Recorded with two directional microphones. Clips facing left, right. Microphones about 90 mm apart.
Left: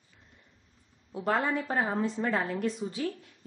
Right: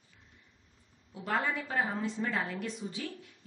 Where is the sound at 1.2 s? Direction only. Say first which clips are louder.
Left 4 dB; 40° left (ahead or behind).